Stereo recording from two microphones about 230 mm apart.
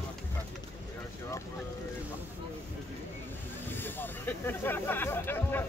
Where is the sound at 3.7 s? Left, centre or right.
Centre.